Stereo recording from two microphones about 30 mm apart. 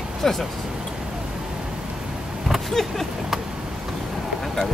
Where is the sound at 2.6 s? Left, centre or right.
Centre.